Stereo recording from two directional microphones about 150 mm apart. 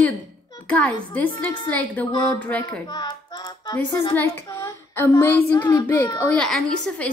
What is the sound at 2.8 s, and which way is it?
Music, 25° left (ahead or behind).